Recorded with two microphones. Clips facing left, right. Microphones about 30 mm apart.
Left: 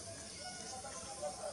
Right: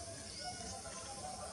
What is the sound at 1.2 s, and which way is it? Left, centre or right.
Music, centre.